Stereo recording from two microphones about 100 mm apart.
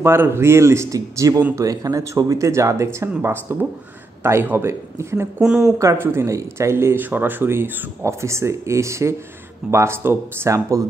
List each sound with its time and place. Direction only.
0.0 s speech: 25° right (ahead or behind)
5.4 s speech: 10° right (ahead or behind)
5.8 s speech: 30° right (ahead or behind)